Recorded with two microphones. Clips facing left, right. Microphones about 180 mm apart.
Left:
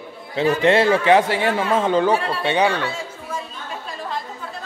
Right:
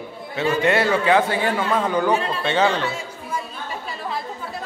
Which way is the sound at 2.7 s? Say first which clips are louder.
Even; 15° right (ahead or behind).